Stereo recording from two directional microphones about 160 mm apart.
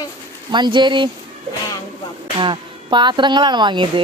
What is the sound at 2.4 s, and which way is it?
Speech, 30° right (ahead or behind).